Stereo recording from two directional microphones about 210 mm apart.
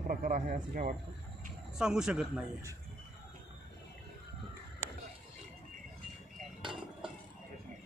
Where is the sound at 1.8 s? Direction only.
5° right (ahead or behind).